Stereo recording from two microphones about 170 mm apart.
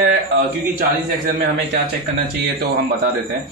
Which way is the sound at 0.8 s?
60° right (ahead or behind).